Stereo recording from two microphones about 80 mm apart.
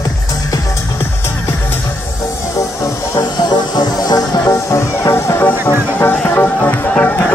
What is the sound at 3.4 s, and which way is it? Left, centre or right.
Music, left.